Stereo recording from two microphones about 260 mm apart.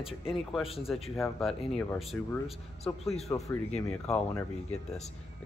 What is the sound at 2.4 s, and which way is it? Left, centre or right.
Speech, left.